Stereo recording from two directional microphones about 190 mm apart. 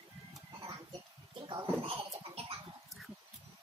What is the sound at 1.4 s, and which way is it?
Bathtub, 30° right (ahead or behind).